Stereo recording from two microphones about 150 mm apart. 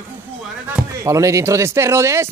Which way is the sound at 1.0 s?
20° right (ahead or behind).